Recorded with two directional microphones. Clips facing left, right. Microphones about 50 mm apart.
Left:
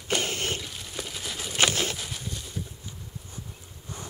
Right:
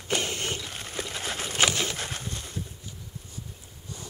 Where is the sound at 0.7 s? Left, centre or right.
Right.